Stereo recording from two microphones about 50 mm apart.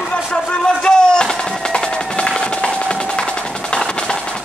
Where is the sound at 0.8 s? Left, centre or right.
Centre.